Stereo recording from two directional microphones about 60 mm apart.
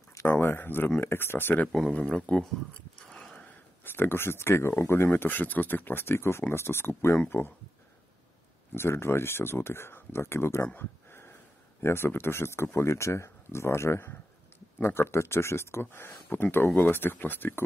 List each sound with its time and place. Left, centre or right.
0.1 s speech: left
2.0 s speech: centre
3.0 s a sound: centre
3.8 s speech: left
8.7 s speech: left
10.7 s a sound: left
11.8 s speech: left